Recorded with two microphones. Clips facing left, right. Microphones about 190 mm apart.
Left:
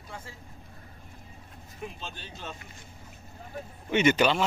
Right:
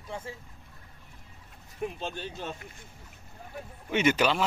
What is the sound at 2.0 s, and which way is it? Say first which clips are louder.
Speech: right 6 dB; 55° right (ahead or behind).